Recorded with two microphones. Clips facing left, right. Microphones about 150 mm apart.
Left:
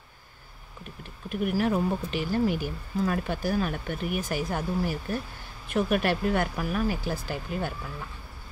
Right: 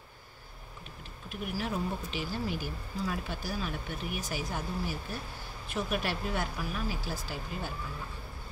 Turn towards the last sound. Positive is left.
turn(degrees=55)  # may be behind; listen again after turning